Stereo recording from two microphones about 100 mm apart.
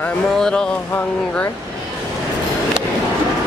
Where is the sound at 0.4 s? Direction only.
5° left (ahead or behind).